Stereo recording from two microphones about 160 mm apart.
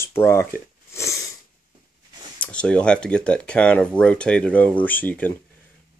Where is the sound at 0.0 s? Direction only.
15° left (ahead or behind).